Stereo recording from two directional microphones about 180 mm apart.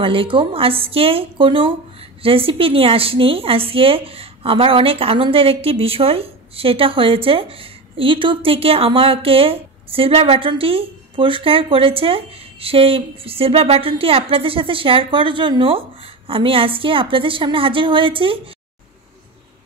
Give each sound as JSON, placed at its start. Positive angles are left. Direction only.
{"t": 0.0, "sound": "a woman's voice", "side_deg": -30}